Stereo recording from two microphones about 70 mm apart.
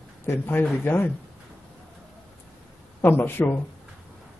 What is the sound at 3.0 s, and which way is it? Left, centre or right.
Speech, left.